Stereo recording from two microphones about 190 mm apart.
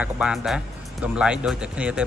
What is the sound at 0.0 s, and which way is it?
Speech, 5° right (ahead or behind).